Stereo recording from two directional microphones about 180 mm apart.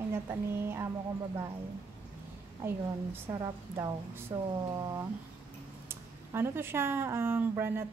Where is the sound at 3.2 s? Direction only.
15° right (ahead or behind).